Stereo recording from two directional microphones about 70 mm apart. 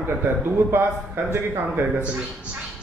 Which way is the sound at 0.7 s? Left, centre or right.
Right.